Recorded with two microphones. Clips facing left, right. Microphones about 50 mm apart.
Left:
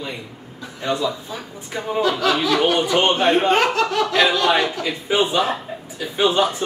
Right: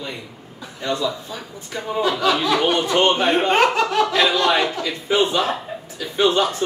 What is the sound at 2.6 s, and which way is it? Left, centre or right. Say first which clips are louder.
Speech: even; centre.